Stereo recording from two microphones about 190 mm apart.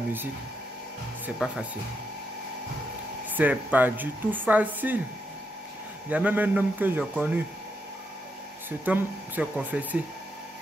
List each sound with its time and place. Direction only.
1.4 s speech: 5° right (ahead or behind)
3.3 s speech: 10° right (ahead or behind)
6.0 s speech: 10° right (ahead or behind)
8.6 s speech: 10° right (ahead or behind)